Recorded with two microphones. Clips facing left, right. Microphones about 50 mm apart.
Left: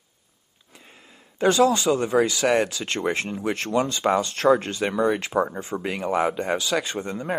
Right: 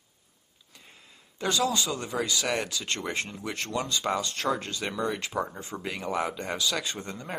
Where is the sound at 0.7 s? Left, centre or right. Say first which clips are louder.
Left 4 dB; left.